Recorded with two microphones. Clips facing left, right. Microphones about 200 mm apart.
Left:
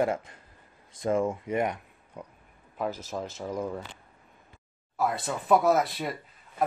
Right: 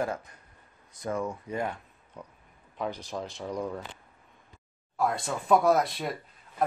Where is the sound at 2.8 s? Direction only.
5° left (ahead or behind).